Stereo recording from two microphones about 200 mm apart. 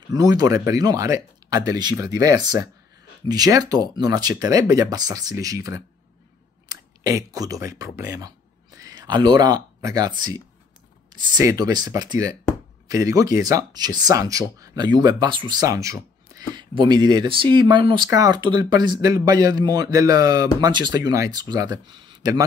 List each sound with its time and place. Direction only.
0.1 s speech: 20° right (ahead or behind)